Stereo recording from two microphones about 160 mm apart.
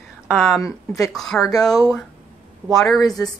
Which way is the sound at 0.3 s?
Centre (ahead or behind).